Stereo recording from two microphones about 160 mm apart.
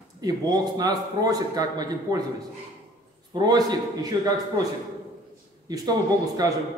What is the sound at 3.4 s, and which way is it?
Speech, 25° right (ahead or behind).